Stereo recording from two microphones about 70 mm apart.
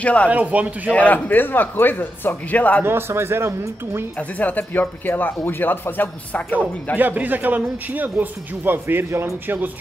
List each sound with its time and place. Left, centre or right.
0.0 s speech: centre
0.3 s a man's voice: right
0.9 s speech: left
2.8 s speech: right
4.2 s speech: left
7.0 s a man's voice: right